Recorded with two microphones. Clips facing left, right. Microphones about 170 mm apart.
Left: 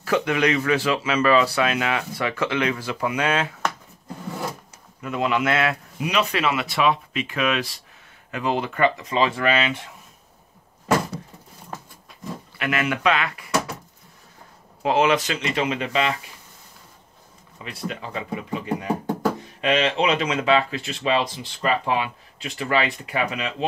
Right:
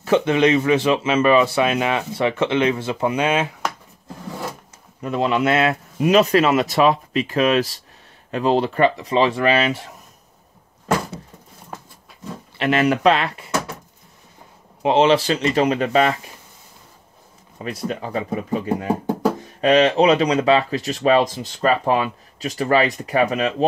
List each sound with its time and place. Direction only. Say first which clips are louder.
0.0 s speech: right 5 dB; 25° right (ahead or behind)
5.0 s speech: right 4 dB; 30° right (ahead or behind)
5.9 s speech: right 11 dB; 45° right (ahead or behind)
12.5 s speech: right 7 dB; 30° right (ahead or behind)
14.8 s speech: right 4 dB; 25° right (ahead or behind); by 16.2 s 45° right (ahead or behind)
17.6 s speech: right 6 dB; 40° right (ahead or behind)